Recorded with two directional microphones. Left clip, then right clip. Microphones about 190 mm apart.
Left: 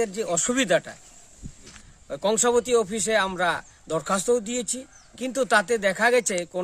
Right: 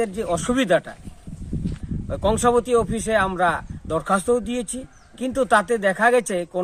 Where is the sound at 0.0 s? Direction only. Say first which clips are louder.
Right 2 dB; 15° left (ahead or behind).